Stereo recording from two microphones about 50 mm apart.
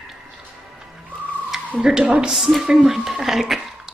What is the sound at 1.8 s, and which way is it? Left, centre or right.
Speech, centre.